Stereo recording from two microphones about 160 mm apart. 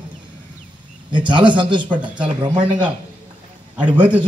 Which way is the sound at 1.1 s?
30° right (ahead or behind).